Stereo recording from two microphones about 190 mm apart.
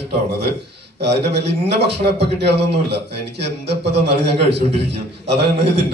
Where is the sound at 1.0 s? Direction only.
60° right (ahead or behind).